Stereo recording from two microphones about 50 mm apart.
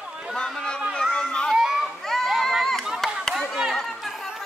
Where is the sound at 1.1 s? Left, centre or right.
Centre.